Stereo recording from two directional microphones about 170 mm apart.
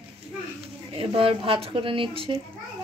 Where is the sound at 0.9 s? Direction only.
35° right (ahead or behind).